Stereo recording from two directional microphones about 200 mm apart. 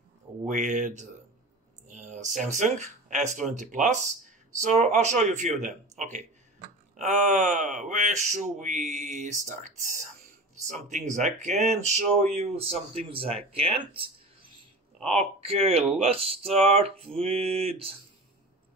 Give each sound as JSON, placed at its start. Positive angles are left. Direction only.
{"t": 0.5, "sound": "speech", "side_deg": -40}
{"t": 15.0, "sound": "speech", "side_deg": 0}
{"t": 15.4, "sound": "speech", "side_deg": -30}